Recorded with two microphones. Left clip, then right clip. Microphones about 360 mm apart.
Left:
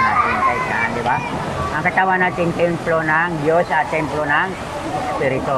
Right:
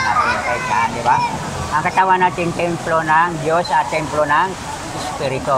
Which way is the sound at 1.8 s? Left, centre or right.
Right.